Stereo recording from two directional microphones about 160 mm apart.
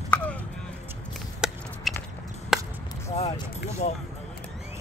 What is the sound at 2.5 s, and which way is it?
Chop, 5° right (ahead or behind).